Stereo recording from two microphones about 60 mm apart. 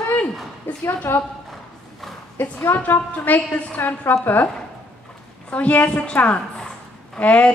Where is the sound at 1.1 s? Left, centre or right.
Left.